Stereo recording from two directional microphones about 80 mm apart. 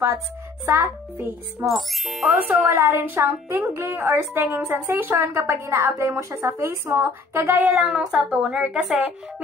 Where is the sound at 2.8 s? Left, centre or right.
Right.